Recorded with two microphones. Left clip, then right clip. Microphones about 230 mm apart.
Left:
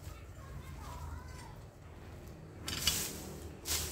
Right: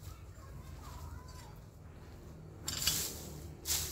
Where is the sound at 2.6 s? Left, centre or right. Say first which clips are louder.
Left 1 dB; right.